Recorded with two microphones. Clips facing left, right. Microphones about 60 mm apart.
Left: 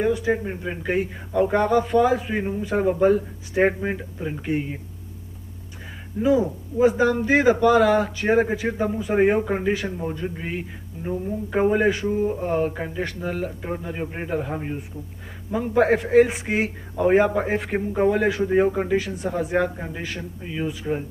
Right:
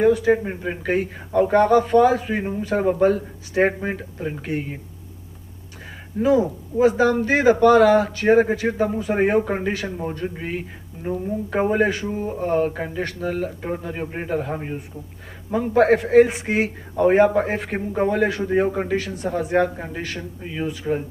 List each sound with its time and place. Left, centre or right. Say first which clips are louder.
0.0 s speech: right 5 dB; centre
0.3 s speech: right 4 dB; centre
0.8 s a man's voice: right 1 dB; centre
6.1 s a man's voice: right 2 dB; centre